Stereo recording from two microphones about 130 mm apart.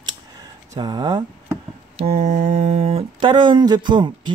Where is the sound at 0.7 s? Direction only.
35° right (ahead or behind).